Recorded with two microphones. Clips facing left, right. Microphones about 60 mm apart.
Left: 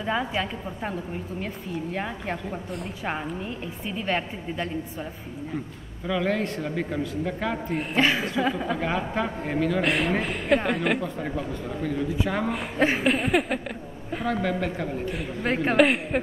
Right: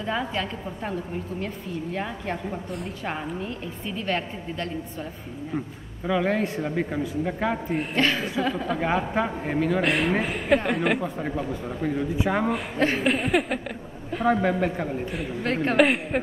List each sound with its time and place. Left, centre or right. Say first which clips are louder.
0.0 s a woman's voice: left 1 dB; centre
6.0 s a woman's voice: right 2 dB; centre
7.7 s a woman's voice: left 3 dB; centre
8.7 s a woman's voice: right 2 dB; centre
12.4 s a woman's voice: even; centre
14.2 s a man's voice: right 4 dB; right
15.0 s a woman's voice: even; centre